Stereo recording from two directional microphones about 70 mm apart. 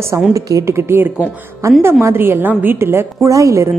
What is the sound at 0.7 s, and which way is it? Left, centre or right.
A woman's voice, right.